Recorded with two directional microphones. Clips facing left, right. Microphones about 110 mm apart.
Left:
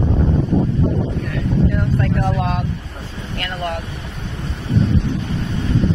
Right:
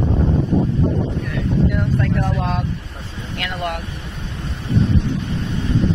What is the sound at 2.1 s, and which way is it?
Speech, 10° left (ahead or behind).